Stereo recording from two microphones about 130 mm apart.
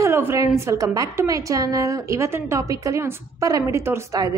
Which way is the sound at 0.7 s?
25° right (ahead or behind).